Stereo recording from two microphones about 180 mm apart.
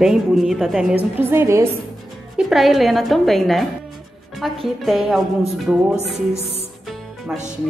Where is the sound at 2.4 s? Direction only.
Centre (ahead or behind).